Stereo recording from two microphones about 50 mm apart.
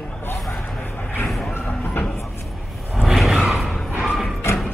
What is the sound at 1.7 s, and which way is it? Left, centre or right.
Music, left.